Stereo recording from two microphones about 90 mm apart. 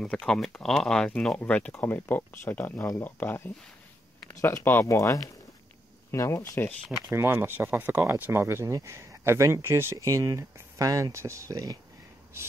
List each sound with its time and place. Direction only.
0.0 s speech: 10° left (ahead or behind); by 6.7 s 35° left (ahead or behind)
7.1 s speech: 25° right (ahead or behind)
9.9 s speech: 40° right (ahead or behind)